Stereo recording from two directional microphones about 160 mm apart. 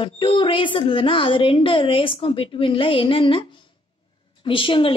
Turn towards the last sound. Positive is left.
turn(degrees=30)  # may be behind; listen again after turning